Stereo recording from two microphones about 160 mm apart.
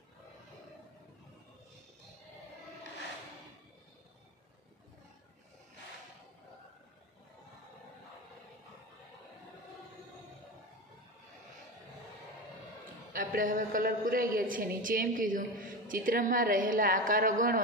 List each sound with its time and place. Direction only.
13.1 s a woman's voice: 60° right (ahead or behind)